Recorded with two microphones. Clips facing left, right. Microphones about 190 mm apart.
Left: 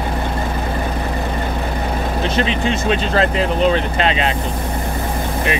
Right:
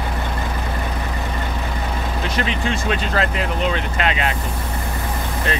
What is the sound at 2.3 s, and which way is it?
Speech, 25° left (ahead or behind).